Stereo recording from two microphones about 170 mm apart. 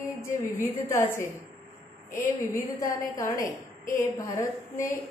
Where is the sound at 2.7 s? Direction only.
20° left (ahead or behind).